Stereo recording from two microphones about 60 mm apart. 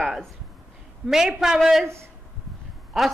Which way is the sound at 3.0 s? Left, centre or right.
Centre.